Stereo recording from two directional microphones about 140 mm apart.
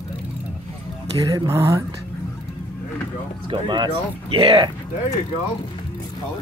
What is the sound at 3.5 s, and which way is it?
Speech, 35° right (ahead or behind).